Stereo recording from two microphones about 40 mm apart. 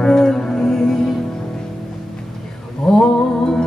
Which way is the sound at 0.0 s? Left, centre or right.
Centre.